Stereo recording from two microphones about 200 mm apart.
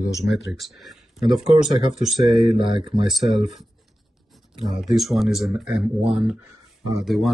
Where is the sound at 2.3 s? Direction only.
25° right (ahead or behind).